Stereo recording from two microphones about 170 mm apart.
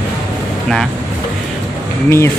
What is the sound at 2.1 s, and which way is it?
Speech, 15° left (ahead or behind).